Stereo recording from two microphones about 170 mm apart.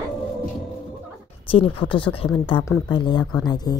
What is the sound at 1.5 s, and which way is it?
Speech, 30° left (ahead or behind).